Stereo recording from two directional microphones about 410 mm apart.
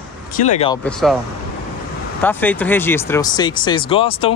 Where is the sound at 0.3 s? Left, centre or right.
Centre.